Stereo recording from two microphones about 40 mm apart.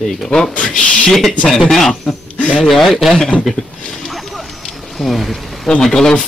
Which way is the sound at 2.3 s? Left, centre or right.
Left.